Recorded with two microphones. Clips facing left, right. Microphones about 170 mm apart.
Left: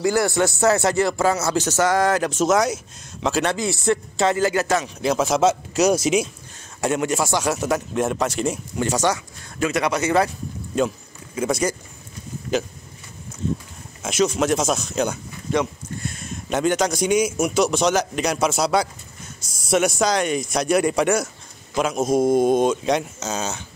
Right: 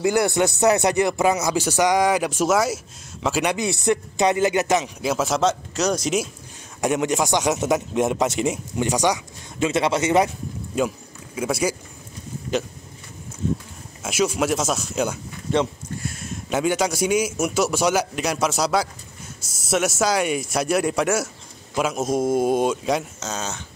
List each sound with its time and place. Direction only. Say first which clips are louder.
0.0 s speech: even; 20° right (ahead or behind)
3.5 s a man's voice: even; 20° right (ahead or behind)
5.0 s a man's voice: left 3 dB; centre (ahead or behind)
6.8 s speech: even; 15° right (ahead or behind)
10.7 s speech: left 2 dB; 10° right (ahead or behind)
14.0 s a man's voice: left 2 dB; 10° right (ahead or behind)